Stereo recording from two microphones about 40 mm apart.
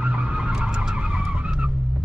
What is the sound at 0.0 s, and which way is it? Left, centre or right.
Vehicle, right.